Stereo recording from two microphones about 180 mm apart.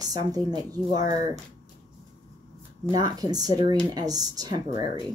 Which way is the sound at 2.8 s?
20° right (ahead or behind).